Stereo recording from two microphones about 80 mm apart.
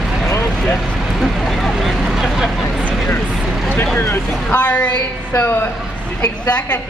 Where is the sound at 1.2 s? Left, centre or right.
Centre.